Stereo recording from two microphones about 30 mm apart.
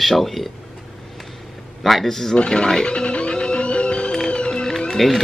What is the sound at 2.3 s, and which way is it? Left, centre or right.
Speech, left.